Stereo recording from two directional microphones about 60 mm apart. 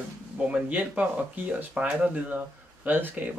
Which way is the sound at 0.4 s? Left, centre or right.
Right.